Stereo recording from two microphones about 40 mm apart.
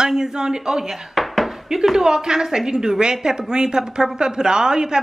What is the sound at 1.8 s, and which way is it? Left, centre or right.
A woman's voice, centre.